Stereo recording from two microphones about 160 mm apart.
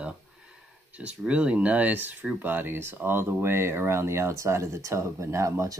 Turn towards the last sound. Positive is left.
turn(degrees=-20)  # may be behind; listen again after turning